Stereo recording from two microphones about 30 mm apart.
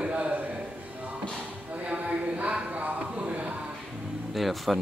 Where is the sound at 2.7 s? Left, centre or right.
Right.